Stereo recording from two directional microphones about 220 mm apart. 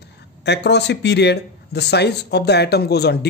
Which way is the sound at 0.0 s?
50° left (ahead or behind).